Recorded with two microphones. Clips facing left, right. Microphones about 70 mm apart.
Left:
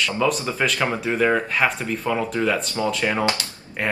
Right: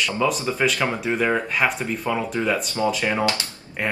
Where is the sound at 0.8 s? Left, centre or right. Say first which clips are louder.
Left 1 dB; centre.